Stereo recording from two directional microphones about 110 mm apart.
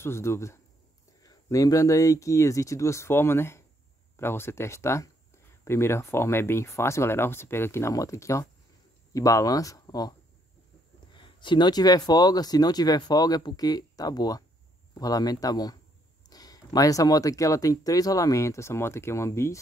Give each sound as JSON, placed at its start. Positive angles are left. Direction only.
{"t": 0.0, "sound": "speech", "side_deg": 25}
{"t": 11.1, "sound": "speech", "side_deg": 45}